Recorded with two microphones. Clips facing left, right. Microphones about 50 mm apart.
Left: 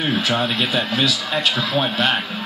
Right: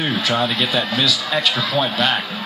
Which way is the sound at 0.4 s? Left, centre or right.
Left.